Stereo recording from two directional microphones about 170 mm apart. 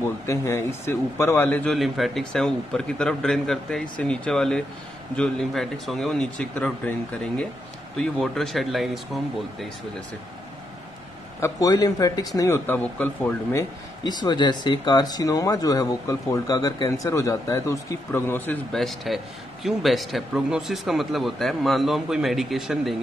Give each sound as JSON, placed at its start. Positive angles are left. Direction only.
{"t": 0.0, "sound": "speech", "side_deg": 15}
{"t": 1.7, "sound": "a man's voice", "side_deg": 0}
{"t": 11.4, "sound": "speech", "side_deg": 20}